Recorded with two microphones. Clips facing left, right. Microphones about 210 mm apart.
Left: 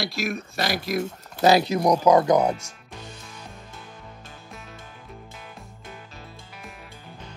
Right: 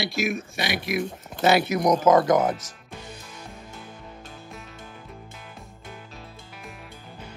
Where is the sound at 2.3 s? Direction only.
Centre (ahead or behind).